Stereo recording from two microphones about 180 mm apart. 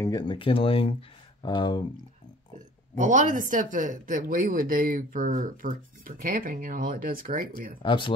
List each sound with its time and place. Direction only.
0.0 s speech: 25° left (ahead or behind)
3.0 s speech: 45° right (ahead or behind)
7.8 s speech: 25° left (ahead or behind)